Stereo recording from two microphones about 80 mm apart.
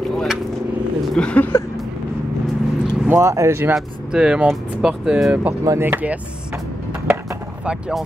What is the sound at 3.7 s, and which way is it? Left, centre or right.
Speech, centre.